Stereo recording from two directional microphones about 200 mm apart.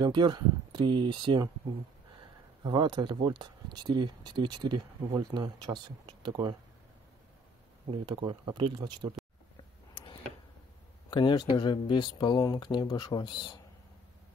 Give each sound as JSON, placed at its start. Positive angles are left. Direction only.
{"t": 0.0, "sound": "speech", "side_deg": -20}
{"t": 2.6, "sound": "speech", "side_deg": -20}
{"t": 8.0, "sound": "speech", "side_deg": -20}
{"t": 11.1, "sound": "speech", "side_deg": 20}